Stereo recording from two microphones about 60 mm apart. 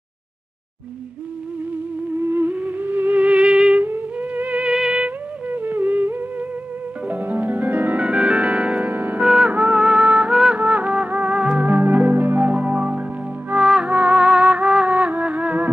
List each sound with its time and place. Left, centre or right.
2.1 s music: right
3.2 s music: centre
4.2 s music: right
4.6 s music: centre
5.5 s music: right
5.9 s humming: right
7.1 s music: right
8.0 s music: centre
8.9 s music: right
9.2 s music: centre
10.0 s music: right
11.6 s music: right
13.6 s music: centre
15.1 s music: right